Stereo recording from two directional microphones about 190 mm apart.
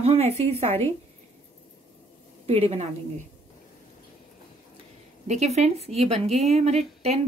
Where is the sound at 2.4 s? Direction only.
35° right (ahead or behind).